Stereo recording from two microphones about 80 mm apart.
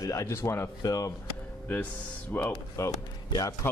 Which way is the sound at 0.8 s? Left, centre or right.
Left.